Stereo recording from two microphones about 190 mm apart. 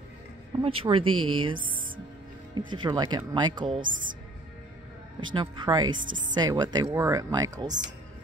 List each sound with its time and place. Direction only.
0.6 s speech: 25° right (ahead or behind)
3.8 s speech: 45° right (ahead or behind)
5.2 s speech: 25° right (ahead or behind)
5.9 s speech: 45° right (ahead or behind)
6.3 s speech: 20° right (ahead or behind)